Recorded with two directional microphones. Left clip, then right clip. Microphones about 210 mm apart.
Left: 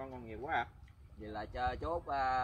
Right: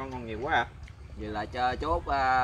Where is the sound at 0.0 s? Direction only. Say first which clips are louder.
Right 10 dB; 15° left (ahead or behind).